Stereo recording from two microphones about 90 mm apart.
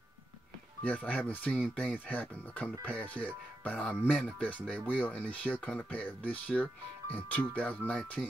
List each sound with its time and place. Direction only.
0.8 s speech: 15° left (ahead or behind)